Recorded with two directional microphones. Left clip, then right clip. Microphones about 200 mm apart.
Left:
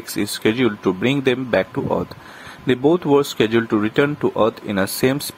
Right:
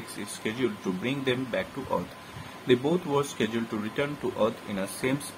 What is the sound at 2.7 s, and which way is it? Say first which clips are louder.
Speech: left 9 dB; 50° left (ahead or behind).